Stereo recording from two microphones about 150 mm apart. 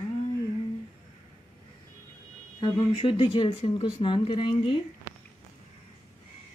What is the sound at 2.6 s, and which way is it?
Speech, 35° left (ahead or behind).